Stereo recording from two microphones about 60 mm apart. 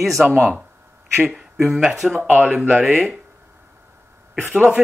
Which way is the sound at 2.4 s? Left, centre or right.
Centre.